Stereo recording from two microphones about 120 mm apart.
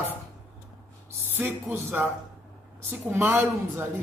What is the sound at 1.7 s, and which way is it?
Speech, 15° right (ahead or behind).